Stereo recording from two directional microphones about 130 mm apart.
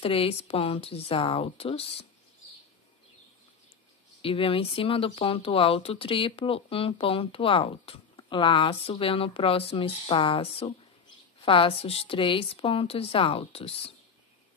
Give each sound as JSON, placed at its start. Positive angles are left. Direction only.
{"t": 0.0, "sound": "speech", "side_deg": 45}
{"t": 4.2, "sound": "speech", "side_deg": 45}